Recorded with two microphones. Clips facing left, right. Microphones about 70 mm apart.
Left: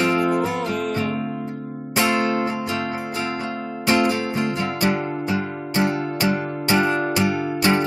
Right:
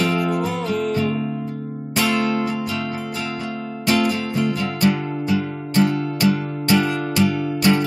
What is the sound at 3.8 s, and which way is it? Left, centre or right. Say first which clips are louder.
Music: even; left.